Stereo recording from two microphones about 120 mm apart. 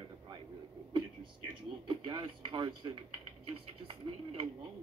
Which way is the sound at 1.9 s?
40° right (ahead or behind).